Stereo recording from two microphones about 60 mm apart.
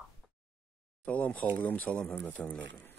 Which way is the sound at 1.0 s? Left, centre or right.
Left.